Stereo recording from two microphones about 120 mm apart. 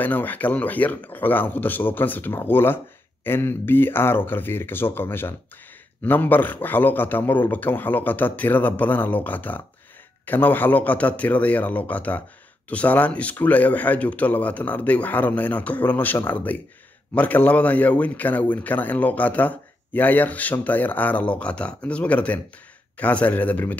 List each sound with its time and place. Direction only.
0.0 s a man's voice: 15° left (ahead or behind)